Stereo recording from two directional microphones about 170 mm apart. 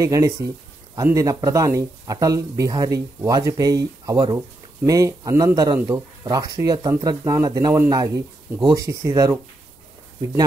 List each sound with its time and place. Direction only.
0.0 s speech: 20° right (ahead or behind)